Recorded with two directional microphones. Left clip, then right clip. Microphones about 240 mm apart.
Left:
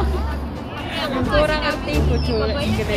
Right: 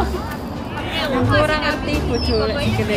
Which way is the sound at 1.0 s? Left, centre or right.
Centre.